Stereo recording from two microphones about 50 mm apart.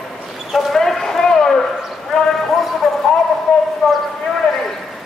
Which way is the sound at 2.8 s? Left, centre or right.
Centre.